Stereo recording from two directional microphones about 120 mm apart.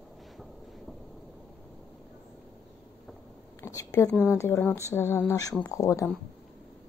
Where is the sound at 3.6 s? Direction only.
25° left (ahead or behind).